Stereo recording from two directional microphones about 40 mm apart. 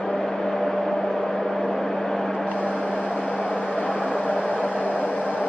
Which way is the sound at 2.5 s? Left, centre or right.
Left.